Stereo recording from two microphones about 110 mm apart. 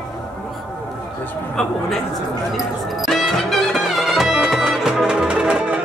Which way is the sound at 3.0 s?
Centre (ahead or behind).